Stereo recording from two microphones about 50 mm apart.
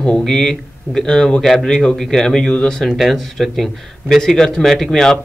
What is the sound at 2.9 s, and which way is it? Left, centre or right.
Speech, centre.